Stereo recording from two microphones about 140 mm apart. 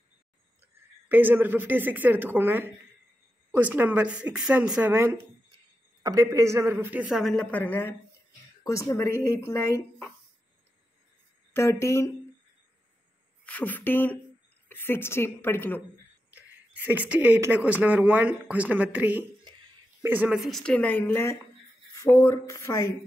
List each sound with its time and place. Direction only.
1.0 s a man's voice: 15° right (ahead or behind)
7.1 s a woman's voice: centre (ahead or behind)
7.5 s a woman's voice: 15° left (ahead or behind)
11.5 s speech: 20° left (ahead or behind)
13.5 s a woman's voice: 10° left (ahead or behind)
16.3 s speech: 10° right (ahead or behind)
20.4 s a woman's voice: 5° left (ahead or behind); by 22.9 s 20° left (ahead or behind)